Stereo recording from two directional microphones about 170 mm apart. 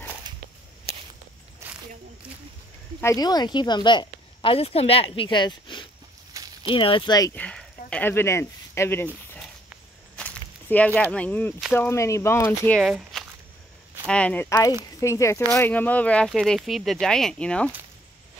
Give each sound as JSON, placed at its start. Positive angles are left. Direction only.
{"t": 3.0, "sound": "speech", "side_deg": 20}
{"t": 6.3, "sound": "a sound", "side_deg": -20}
{"t": 6.7, "sound": "speech", "side_deg": 30}
{"t": 7.3, "sound": "a sound", "side_deg": 5}
{"t": 10.1, "sound": "walk", "side_deg": 5}
{"t": 11.0, "sound": "speech", "side_deg": 5}
{"t": 12.8, "sound": "speech", "side_deg": 0}